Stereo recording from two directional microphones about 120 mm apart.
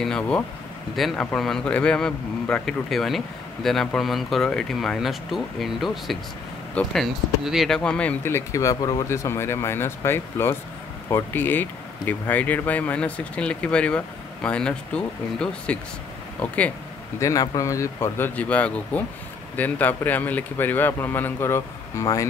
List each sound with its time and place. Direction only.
0.0 s speech: 5° left (ahead or behind)
17.2 s speech: 25° left (ahead or behind)